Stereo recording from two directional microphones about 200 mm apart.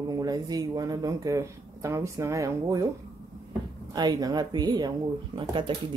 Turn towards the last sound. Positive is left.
turn(degrees=-25)  # may be behind; listen again after turning